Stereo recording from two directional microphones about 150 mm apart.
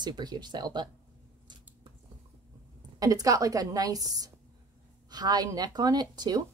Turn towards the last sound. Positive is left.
turn(degrees=-25)  # may be behind; listen again after turning